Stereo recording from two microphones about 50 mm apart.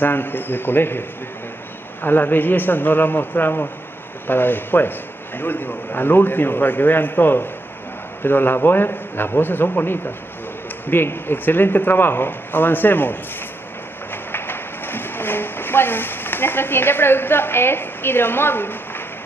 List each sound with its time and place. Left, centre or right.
0.0 s speech: left
2.0 s a man's voice: left
14.1 s a sound: left